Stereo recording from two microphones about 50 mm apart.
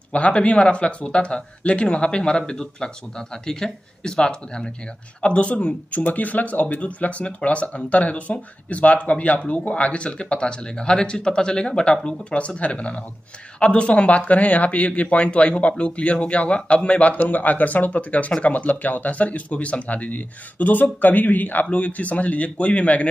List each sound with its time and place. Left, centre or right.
0.1 s speech: left